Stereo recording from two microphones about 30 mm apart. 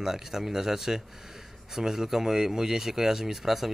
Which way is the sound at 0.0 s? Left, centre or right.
Centre.